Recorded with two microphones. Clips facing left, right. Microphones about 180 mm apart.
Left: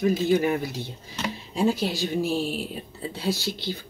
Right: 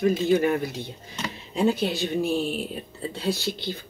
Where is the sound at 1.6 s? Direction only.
60° right (ahead or behind).